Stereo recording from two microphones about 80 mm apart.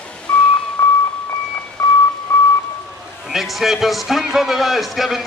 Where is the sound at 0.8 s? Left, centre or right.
Left.